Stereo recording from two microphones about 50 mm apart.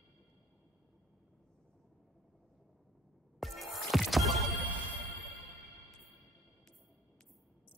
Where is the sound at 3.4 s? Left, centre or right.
Centre.